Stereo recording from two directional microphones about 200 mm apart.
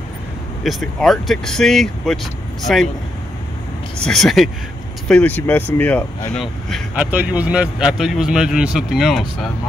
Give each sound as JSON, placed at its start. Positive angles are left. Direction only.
{"t": 0.7, "sound": "speech", "side_deg": 0}
{"t": 4.0, "sound": "speech", "side_deg": 0}